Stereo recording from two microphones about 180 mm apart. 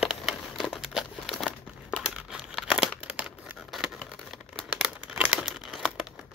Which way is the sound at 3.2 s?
5° right (ahead or behind).